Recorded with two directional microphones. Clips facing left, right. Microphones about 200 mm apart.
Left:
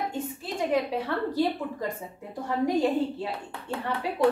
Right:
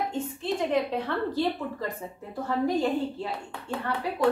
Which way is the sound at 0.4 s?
5° left (ahead or behind).